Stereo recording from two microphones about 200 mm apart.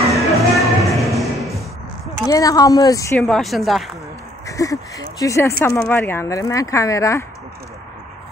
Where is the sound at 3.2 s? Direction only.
Centre (ahead or behind).